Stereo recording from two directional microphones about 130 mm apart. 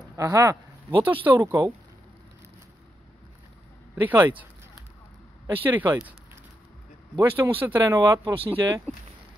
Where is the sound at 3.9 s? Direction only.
15° right (ahead or behind).